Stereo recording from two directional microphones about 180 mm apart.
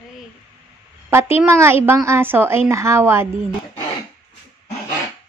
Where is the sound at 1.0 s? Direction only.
15° right (ahead or behind).